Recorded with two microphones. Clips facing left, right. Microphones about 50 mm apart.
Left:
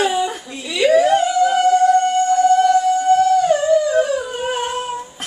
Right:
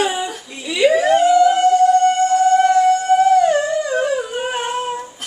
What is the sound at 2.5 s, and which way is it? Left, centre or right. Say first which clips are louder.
Siren: even; right.